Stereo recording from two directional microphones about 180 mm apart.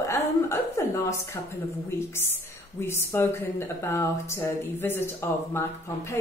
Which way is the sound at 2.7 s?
15° left (ahead or behind).